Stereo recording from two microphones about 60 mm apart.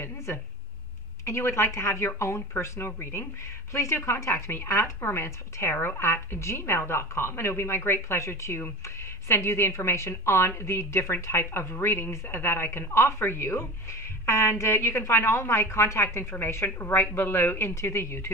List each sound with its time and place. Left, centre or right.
1.2 s speech: left